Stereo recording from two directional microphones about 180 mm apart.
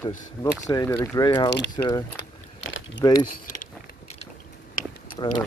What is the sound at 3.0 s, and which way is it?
Speech, 20° left (ahead or behind).